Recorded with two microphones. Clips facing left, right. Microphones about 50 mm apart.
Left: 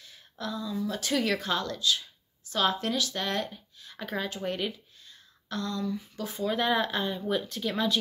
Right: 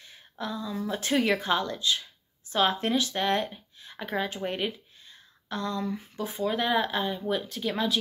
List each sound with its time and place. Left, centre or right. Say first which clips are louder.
0.0 s a sound: right 1 dB; right
0.8 s speech: right 3 dB; right
6.4 s speech: right 1 dB; centre